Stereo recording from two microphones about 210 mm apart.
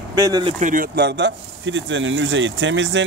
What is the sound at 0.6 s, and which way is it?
Speech, 40° right (ahead or behind).